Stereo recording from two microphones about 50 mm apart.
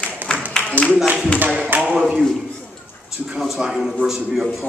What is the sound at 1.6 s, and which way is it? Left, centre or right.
Speech, right.